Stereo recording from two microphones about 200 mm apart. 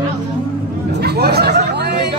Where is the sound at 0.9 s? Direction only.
55° right (ahead or behind).